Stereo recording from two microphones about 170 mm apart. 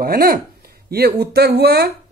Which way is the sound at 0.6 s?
65° right (ahead or behind).